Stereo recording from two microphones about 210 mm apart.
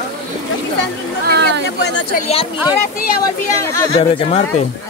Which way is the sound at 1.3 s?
55° right (ahead or behind).